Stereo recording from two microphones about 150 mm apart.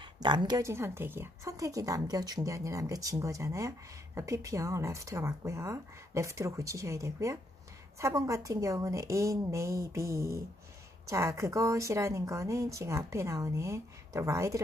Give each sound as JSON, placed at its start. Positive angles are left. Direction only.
{"t": 0.0, "sound": "a woman's voice", "side_deg": -30}